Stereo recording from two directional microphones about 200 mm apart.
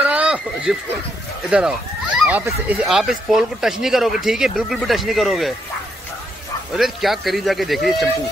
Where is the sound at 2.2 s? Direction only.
10° right (ahead or behind).